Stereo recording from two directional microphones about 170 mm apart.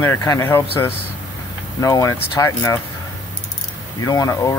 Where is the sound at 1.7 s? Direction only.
20° left (ahead or behind).